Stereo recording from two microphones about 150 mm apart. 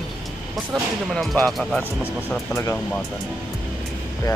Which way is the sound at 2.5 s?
15° left (ahead or behind).